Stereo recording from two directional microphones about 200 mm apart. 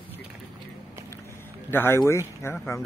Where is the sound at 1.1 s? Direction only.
10° left (ahead or behind).